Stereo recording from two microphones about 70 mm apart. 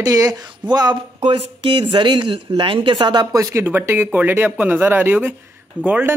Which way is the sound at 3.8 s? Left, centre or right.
Right.